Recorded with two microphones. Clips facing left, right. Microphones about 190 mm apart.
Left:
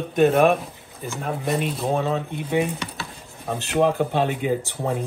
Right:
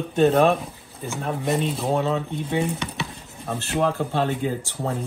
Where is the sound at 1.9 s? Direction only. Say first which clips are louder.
Even; 15° left (ahead or behind).